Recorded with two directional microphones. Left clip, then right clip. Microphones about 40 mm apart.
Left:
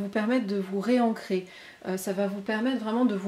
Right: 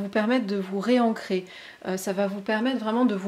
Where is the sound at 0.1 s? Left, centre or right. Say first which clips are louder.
Right 3 dB; right.